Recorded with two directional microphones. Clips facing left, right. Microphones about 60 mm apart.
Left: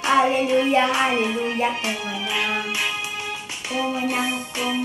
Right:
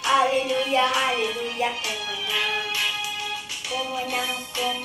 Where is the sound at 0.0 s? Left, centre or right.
Left.